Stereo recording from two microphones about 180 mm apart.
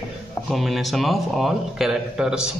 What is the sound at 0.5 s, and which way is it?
A man's voice, centre (ahead or behind).